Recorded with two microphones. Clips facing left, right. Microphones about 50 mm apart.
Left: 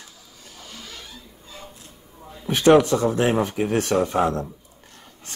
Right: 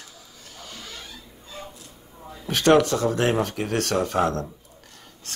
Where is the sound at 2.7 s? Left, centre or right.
Centre.